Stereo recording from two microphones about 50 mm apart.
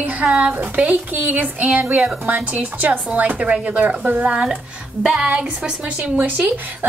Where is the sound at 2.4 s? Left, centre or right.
Right.